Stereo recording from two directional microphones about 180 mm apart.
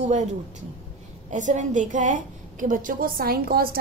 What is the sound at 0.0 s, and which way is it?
A woman's voice, 40° right (ahead or behind).